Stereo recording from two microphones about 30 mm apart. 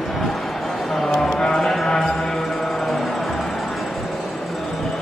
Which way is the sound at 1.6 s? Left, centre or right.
Centre.